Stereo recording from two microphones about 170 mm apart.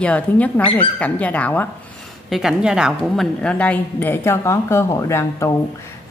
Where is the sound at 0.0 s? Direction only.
10° left (ahead or behind).